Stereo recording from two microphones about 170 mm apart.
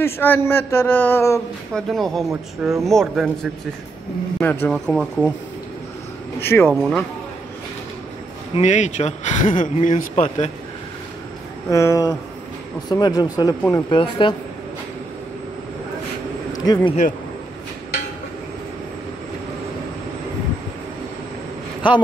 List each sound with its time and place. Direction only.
0.0 s a man's voice: 15° left (ahead or behind)
1.7 s speech: centre (ahead or behind)
4.4 s a man's voice: 10° left (ahead or behind)
6.4 s a man's voice: 15° left (ahead or behind)
6.7 s speech: centre (ahead or behind)
8.5 s speech: 45° left (ahead or behind)
11.7 s a man's voice: 20° left (ahead or behind)
16.5 s speech: 25° left (ahead or behind)